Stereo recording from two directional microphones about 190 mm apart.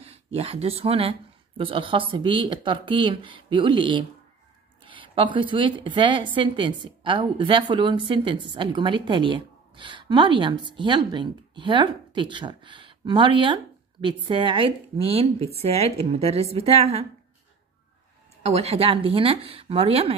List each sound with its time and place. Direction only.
0.0 s a woman's voice: 30° right (ahead or behind)
18.4 s speech: 35° right (ahead or behind)